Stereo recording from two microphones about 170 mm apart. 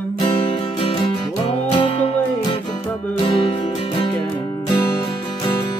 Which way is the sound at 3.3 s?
30° left (ahead or behind).